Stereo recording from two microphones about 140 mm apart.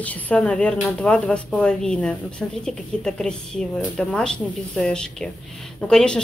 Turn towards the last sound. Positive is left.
turn(degrees=5)  # may be behind; listen again after turning